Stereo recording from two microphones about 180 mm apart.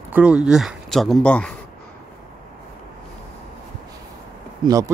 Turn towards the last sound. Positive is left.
turn(degrees=-20)  # may be behind; listen again after turning